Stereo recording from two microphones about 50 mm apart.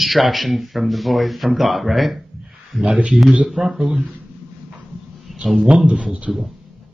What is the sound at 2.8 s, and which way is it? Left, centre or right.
Speech, right.